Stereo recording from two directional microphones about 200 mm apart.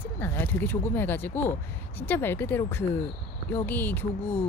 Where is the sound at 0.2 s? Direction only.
10° left (ahead or behind).